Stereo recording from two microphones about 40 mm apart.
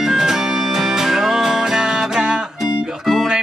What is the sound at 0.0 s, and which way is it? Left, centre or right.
Music, centre.